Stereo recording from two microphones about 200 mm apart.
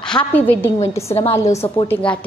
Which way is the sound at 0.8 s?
30° left (ahead or behind).